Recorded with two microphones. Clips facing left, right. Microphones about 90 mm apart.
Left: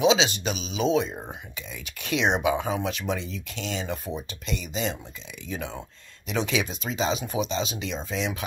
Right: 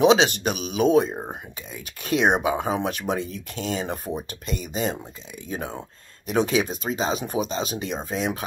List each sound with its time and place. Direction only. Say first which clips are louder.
0.0 s speech: right 4 dB; 55° right (ahead or behind)